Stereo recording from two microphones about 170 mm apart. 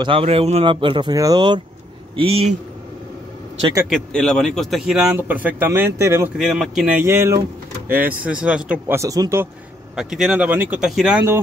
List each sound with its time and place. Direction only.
0.0 s speech: 35° right (ahead or behind)
3.9 s a man's voice: 5° left (ahead or behind); by 6.3 s 15° right (ahead or behind)
6.3 s a man's voice: 5° right (ahead or behind)
9.9 s speech: 5° right (ahead or behind)